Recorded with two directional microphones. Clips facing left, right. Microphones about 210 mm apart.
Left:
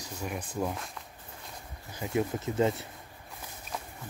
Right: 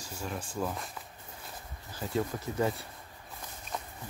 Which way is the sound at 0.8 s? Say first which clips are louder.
Even; centre (ahead or behind).